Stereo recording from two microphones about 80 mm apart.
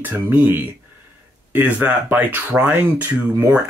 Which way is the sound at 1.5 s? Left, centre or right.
Centre.